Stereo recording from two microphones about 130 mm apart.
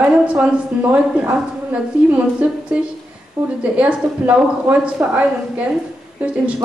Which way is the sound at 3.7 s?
10° right (ahead or behind).